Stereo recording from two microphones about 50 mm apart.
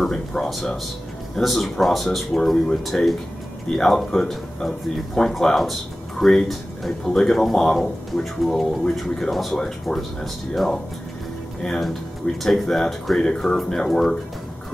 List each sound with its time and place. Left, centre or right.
0.0 s speech: centre
11.8 s speech: centre